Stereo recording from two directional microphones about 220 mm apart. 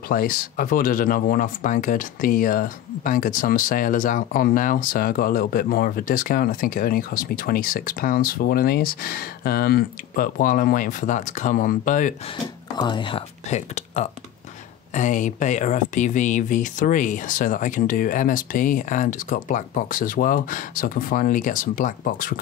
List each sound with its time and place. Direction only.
0.1 s speech: 40° left (ahead or behind)
12.7 s speech: 20° left (ahead or behind); by 22.3 s 40° left (ahead or behind)